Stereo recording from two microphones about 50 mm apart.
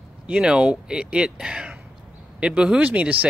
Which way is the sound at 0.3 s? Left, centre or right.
Right.